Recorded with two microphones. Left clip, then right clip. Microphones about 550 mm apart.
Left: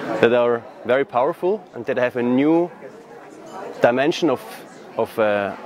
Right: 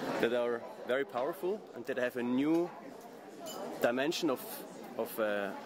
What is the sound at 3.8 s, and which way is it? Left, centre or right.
Speech, left.